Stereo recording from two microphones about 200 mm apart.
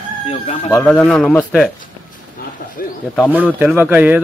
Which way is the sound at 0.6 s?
10° left (ahead or behind).